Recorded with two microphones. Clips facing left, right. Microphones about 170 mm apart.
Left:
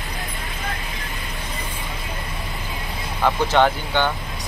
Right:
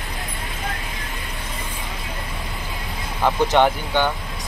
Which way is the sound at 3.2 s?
15° right (ahead or behind).